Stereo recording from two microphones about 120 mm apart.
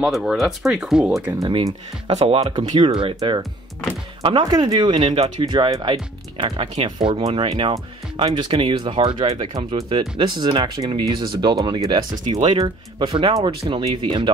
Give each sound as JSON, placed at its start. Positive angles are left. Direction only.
{"t": 0.0, "sound": "speech", "side_deg": 0}
{"t": 2.0, "sound": "speech", "side_deg": -55}
{"t": 2.7, "sound": "speech", "side_deg": -40}
{"t": 4.5, "sound": "speech", "side_deg": -35}
{"t": 5.5, "sound": "speech", "side_deg": -40}